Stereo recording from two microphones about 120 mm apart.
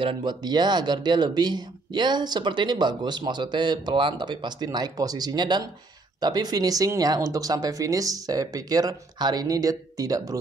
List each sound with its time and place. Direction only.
0.0 s speech: 45° right (ahead or behind)